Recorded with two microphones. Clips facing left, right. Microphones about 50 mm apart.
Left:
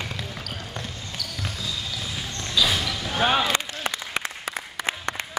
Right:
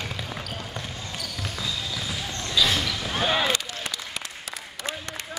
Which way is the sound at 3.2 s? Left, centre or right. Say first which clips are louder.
Left 3 dB; left.